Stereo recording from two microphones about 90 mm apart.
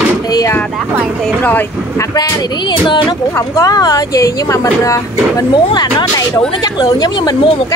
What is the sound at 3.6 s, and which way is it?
Speech, 45° left (ahead or behind).